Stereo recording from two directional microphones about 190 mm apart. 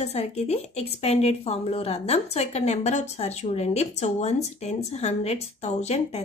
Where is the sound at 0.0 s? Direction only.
35° left (ahead or behind).